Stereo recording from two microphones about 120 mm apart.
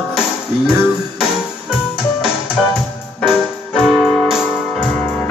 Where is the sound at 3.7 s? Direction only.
5° right (ahead or behind).